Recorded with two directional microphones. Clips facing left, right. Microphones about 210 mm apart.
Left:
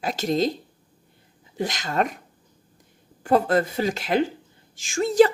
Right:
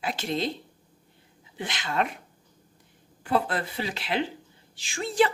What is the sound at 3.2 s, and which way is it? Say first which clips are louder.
A woman's voice: left 7 dB; 45° left (ahead or behind).